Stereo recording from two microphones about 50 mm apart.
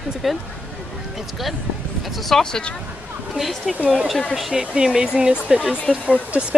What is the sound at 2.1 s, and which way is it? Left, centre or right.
Speech, centre.